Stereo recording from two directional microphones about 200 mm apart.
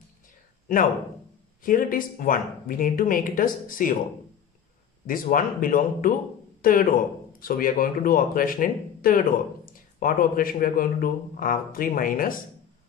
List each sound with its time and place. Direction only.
1.6 s speech: 45° left (ahead or behind)
5.0 s speech: 45° left (ahead or behind)